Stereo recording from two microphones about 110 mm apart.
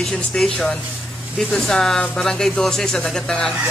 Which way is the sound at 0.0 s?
5° left (ahead or behind).